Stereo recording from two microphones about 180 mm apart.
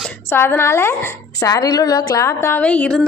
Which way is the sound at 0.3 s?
15° left (ahead or behind).